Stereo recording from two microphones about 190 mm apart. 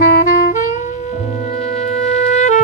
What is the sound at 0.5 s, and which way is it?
Music, 40° left (ahead or behind).